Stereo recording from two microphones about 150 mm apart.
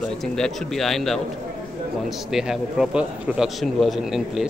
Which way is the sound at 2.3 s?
5° right (ahead or behind).